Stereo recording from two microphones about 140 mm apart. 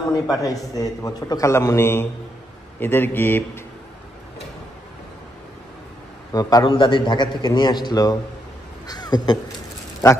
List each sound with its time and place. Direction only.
0.1 s a man's voice: 25° left (ahead or behind)
6.3 s a man's voice: 30° left (ahead or behind)